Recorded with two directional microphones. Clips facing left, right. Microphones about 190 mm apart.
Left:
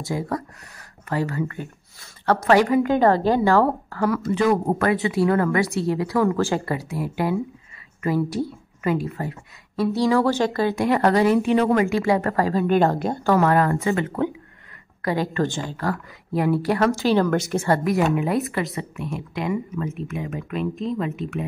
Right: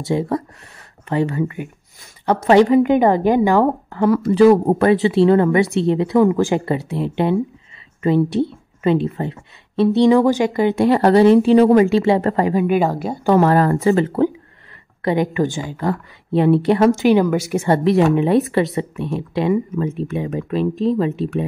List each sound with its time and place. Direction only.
0.0 s a woman's voice: 25° right (ahead or behind)
10.8 s a woman's voice: 30° right (ahead or behind); by 13.3 s 5° right (ahead or behind)
13.4 s speech: 30° right (ahead or behind)
15.0 s speech: 20° right (ahead or behind)
17.6 s a woman's voice: 20° right (ahead or behind)